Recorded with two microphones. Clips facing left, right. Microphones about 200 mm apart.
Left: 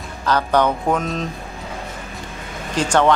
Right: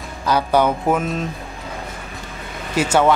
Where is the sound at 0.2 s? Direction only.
10° right (ahead or behind).